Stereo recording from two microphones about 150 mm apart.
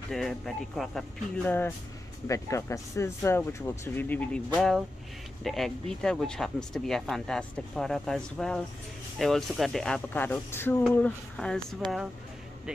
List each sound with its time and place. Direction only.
0.1 s speech: centre (ahead or behind)
2.2 s speech: 20° left (ahead or behind); by 11.6 s 5° left (ahead or behind)